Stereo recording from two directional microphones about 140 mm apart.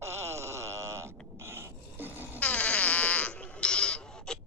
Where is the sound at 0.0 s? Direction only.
20° right (ahead or behind).